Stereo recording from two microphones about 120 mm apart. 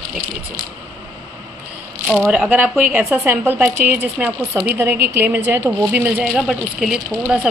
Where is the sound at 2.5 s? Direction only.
15° right (ahead or behind).